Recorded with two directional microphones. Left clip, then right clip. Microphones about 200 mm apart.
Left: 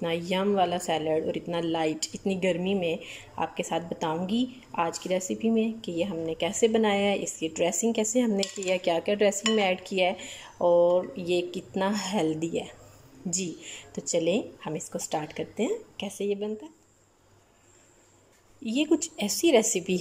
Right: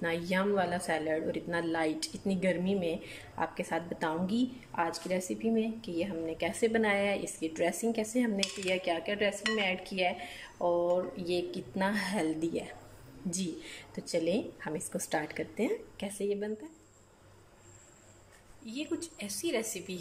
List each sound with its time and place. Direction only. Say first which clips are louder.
0.0 s speech: left 4 dB; 10° left (ahead or behind)
18.7 s a woman's voice: left 12 dB; 40° left (ahead or behind)